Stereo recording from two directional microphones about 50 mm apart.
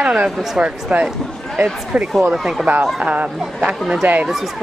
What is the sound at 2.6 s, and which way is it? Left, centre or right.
Speech, right.